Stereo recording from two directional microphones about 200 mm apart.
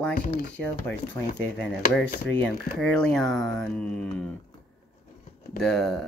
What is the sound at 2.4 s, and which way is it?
Speech, 5° left (ahead or behind).